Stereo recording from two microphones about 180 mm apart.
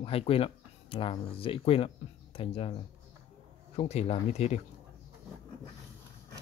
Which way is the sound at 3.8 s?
35° left (ahead or behind).